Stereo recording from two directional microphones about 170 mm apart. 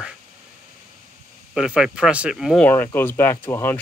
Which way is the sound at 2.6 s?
10° left (ahead or behind).